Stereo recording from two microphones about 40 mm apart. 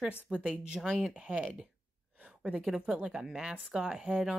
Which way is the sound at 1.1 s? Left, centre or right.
Right.